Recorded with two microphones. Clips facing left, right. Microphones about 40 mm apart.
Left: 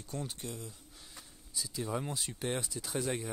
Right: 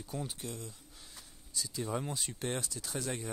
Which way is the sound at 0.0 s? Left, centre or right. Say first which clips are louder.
Even; centre.